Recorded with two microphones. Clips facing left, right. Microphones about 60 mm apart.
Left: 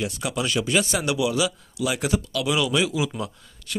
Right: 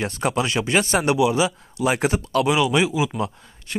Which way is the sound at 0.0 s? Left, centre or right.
Right.